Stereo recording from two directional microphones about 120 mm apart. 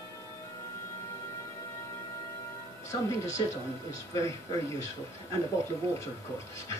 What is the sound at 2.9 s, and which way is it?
A man's voice, 25° left (ahead or behind).